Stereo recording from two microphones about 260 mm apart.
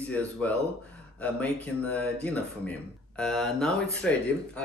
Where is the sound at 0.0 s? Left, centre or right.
Centre.